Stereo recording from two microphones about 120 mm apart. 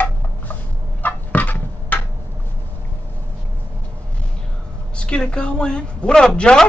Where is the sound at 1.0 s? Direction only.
15° left (ahead or behind).